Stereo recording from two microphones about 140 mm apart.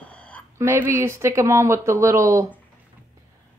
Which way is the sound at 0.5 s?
15° right (ahead or behind).